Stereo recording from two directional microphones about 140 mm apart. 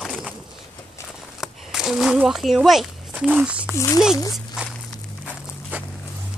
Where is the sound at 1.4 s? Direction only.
5° right (ahead or behind).